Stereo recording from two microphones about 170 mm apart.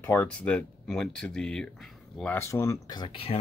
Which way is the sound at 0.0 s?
10° left (ahead or behind).